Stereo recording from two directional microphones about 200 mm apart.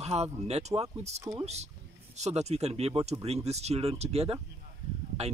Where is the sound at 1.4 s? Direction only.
35° right (ahead or behind).